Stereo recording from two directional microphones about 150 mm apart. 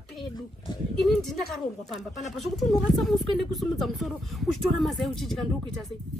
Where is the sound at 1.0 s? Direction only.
Centre (ahead or behind).